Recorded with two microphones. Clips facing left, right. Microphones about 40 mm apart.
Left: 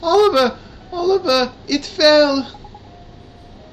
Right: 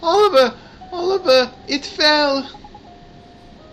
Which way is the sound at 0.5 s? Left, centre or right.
Centre.